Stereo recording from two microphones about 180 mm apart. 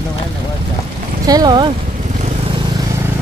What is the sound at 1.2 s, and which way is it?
Speech, 20° right (ahead or behind).